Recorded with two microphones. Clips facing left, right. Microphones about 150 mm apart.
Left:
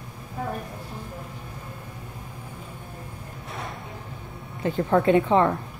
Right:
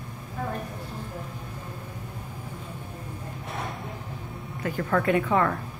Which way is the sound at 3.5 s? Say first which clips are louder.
Right 1 dB; centre (ahead or behind).